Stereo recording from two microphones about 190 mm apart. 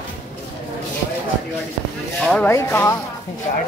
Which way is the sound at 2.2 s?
5° left (ahead or behind).